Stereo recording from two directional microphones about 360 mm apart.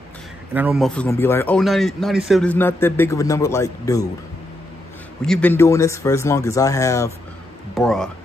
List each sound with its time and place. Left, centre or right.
0.6 s speech: centre
5.2 s speech: centre